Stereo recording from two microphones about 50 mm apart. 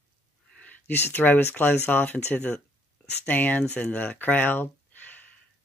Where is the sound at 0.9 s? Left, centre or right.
Left.